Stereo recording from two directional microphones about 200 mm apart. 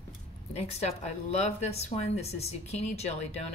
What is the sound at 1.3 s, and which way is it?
A woman's voice, 35° left (ahead or behind).